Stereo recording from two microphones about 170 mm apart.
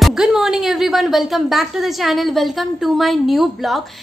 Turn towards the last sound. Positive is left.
turn(degrees=0)  # may be behind; listen again after turning